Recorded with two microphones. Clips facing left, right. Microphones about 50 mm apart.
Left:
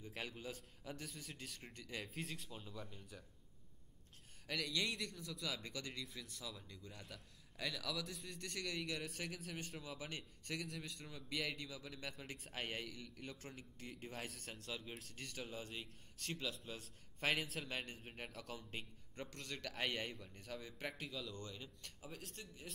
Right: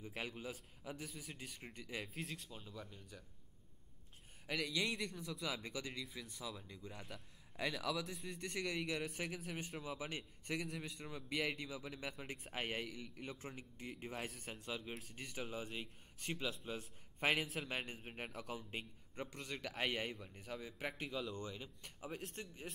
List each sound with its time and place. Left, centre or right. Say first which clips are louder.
0.0 s a man's voice: right 2 dB; centre
2.0 s speech: even; centre
4.5 s a man's voice: right 2 dB; centre
22.0 s a man's voice: right 6 dB; right